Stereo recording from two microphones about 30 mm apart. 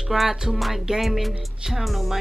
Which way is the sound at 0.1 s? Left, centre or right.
Centre.